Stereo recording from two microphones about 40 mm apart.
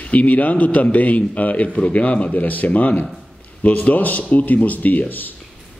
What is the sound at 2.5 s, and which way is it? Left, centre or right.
A man's voice, left.